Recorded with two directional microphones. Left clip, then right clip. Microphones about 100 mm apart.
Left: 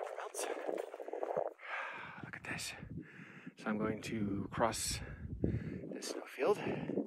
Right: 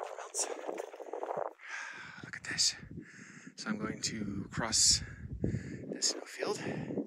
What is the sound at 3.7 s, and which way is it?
Speech, 15° left (ahead or behind).